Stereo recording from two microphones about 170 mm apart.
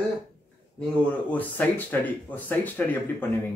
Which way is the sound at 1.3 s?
10° left (ahead or behind).